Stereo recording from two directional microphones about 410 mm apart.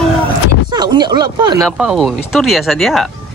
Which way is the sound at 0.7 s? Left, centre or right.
Centre.